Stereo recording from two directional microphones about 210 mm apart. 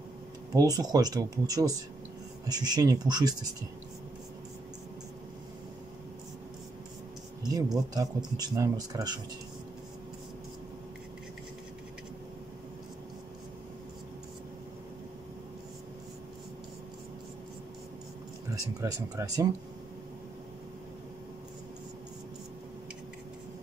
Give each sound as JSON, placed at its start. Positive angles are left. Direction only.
{"t": 0.7, "sound": "speech", "side_deg": -20}
{"t": 7.4, "sound": "speech", "side_deg": -20}
{"t": 18.5, "sound": "speech", "side_deg": -15}